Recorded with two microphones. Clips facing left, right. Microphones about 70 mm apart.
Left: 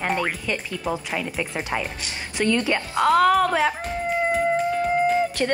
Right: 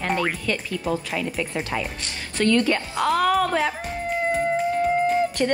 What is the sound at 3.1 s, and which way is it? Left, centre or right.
Speech, centre.